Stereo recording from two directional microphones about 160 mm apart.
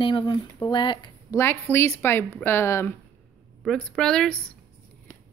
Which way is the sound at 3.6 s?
Centre (ahead or behind).